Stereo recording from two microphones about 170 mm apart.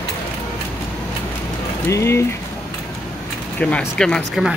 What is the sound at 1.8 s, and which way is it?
Speech, 15° left (ahead or behind).